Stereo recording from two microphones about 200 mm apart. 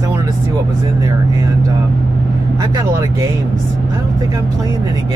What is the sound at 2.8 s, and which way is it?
Speech, 15° right (ahead or behind).